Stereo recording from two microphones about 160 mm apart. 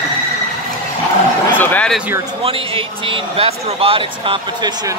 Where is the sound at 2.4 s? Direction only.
35° right (ahead or behind).